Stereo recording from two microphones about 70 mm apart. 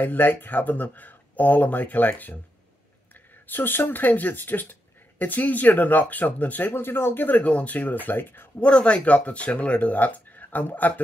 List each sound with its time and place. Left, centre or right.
0.0 s speech: left
3.4 s speech: left
8.5 s speech: centre